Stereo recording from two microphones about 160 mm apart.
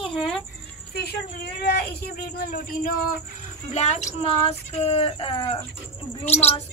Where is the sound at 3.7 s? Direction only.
45° left (ahead or behind).